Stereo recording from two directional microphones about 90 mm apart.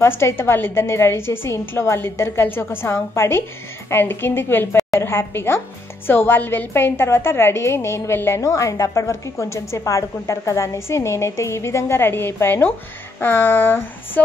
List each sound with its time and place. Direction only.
0.0 s a woman's voice: 30° left (ahead or behind)